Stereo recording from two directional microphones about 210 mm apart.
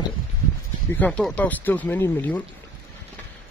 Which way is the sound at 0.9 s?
5° left (ahead or behind).